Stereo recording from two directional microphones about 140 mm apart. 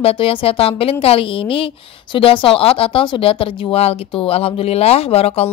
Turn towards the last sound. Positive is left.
turn(degrees=45)  # may be behind; listen again after turning